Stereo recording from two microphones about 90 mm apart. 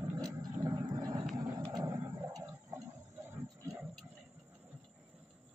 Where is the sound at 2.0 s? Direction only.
35° right (ahead or behind).